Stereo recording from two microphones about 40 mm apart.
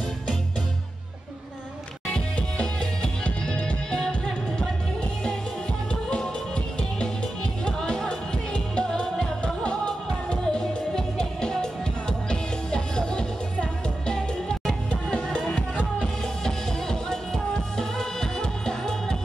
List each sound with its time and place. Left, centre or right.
2.0 s music: left
5.9 s music: left